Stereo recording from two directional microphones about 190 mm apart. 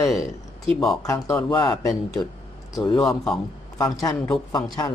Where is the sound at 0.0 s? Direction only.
15° left (ahead or behind).